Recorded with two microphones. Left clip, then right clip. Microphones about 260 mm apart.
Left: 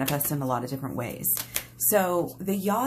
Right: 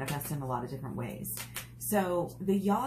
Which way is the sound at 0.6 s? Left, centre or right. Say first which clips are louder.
Left 7 dB; left.